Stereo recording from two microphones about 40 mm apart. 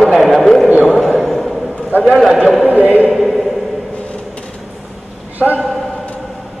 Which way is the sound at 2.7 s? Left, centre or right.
Right.